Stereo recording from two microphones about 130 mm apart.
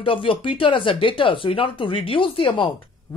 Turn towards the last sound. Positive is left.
turn(degrees=40)  # may be behind; listen again after turning